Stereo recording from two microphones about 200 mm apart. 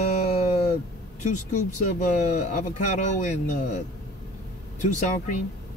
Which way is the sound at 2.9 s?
40° left (ahead or behind).